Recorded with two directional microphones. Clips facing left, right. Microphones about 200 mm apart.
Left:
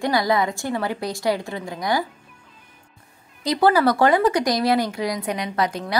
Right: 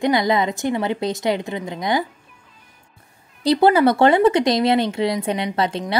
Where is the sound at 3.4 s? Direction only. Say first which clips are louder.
Right 3 dB; 25° right (ahead or behind).